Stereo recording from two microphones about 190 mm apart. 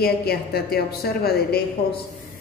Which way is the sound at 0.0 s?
55° left (ahead or behind).